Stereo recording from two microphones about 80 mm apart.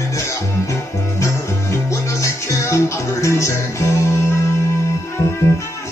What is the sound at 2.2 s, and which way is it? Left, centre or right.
Music, left.